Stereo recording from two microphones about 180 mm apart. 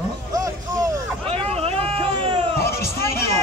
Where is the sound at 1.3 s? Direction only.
35° right (ahead or behind).